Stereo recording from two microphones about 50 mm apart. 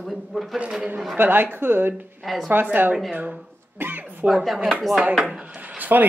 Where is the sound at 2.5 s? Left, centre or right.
Right.